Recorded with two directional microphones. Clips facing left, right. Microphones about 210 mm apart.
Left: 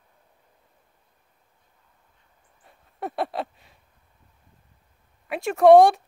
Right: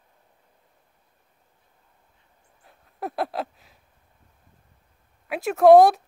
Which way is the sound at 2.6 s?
Centre (ahead or behind).